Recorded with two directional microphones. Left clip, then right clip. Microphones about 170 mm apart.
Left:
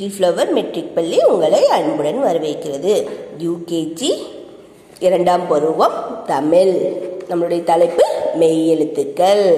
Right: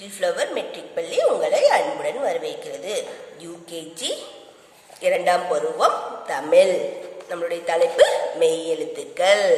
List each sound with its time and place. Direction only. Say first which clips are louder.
0.0 s a woman's voice: left 8 dB; 20° left (ahead or behind)